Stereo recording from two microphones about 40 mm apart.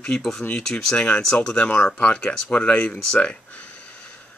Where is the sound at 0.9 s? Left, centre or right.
Left.